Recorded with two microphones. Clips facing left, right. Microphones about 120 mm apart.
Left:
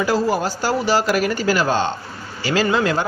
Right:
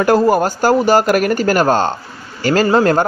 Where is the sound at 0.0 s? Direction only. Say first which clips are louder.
Right 7 dB; 55° right (ahead or behind).